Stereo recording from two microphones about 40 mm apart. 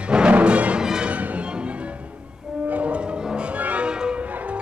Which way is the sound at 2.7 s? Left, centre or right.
Right.